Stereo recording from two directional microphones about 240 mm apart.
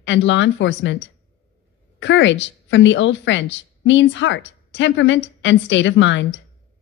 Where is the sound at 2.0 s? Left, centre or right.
Left.